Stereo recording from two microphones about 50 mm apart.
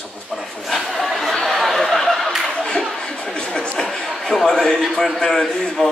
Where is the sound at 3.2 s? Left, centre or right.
Centre.